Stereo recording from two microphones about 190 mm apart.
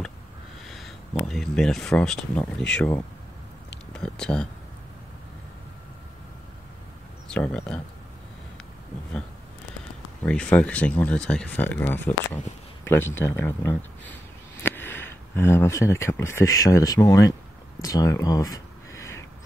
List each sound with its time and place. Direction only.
0.7 s speech: centre (ahead or behind)
7.2 s speech: 5° left (ahead or behind)
10.2 s speech: 5° left (ahead or behind)
17.8 s a sound: 20° left (ahead or behind)